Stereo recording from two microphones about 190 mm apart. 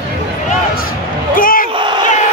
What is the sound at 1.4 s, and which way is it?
Battle cry, 45° left (ahead or behind).